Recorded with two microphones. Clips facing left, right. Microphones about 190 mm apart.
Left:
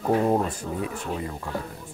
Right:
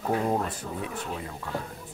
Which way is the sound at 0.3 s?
30° left (ahead or behind).